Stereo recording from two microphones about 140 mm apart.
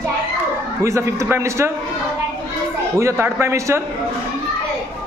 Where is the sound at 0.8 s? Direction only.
20° right (ahead or behind).